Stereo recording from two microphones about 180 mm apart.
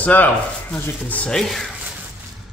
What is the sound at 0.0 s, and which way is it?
Speech, 10° left (ahead or behind).